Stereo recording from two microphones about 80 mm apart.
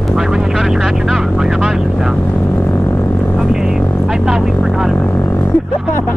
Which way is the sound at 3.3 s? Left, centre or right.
Centre.